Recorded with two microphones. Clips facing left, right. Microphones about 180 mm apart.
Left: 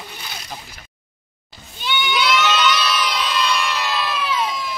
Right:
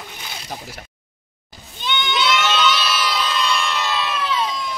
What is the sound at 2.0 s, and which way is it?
Crowd, centre (ahead or behind).